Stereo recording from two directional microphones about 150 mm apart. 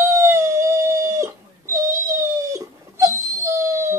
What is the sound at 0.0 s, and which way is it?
Howl, 20° right (ahead or behind).